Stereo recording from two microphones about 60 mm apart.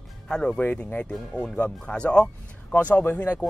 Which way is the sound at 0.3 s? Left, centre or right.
Centre.